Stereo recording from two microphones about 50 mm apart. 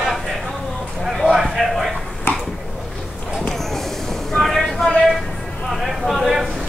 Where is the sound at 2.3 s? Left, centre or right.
Left.